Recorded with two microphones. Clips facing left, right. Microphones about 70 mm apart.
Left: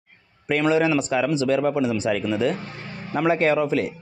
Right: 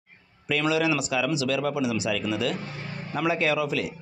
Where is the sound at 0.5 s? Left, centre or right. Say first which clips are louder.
Left 4 dB; left.